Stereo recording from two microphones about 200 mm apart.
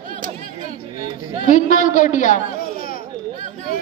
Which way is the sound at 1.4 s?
40° left (ahead or behind).